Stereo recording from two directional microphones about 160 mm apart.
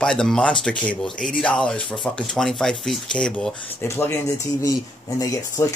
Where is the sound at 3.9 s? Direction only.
15° left (ahead or behind).